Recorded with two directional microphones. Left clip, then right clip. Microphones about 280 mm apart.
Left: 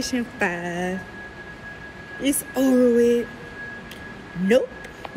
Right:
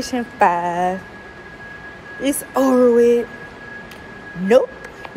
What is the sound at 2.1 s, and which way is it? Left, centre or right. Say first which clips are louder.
Speech: right 5 dB; centre.